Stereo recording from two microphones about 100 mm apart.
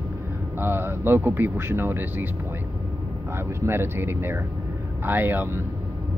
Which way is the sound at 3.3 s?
25° right (ahead or behind).